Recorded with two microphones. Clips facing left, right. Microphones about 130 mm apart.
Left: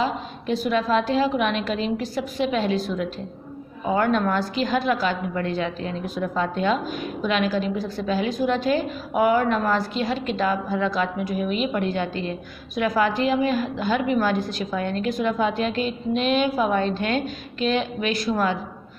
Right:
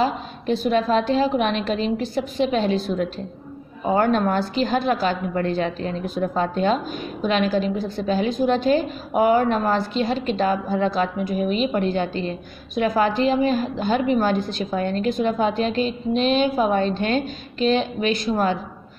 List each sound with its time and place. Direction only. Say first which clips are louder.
0.5 s a woman's voice: right 2 dB; 30° right (ahead or behind)
3.8 s a woman's voice: right 2 dB; 35° right (ahead or behind)